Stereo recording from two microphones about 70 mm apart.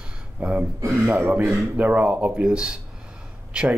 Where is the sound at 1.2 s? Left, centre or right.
Right.